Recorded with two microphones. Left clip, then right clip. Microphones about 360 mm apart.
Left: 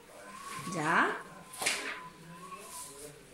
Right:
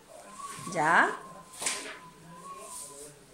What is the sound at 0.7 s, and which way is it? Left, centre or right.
Speech, right.